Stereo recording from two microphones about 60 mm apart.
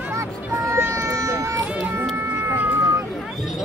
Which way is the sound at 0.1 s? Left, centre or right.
Right.